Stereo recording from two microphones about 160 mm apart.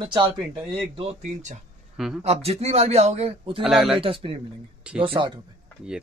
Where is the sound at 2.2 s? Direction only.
40° right (ahead or behind).